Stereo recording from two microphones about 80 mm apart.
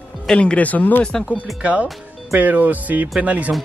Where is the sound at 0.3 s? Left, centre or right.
Centre.